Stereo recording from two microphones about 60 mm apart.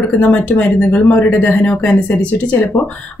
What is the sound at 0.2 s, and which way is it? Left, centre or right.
Speech, left.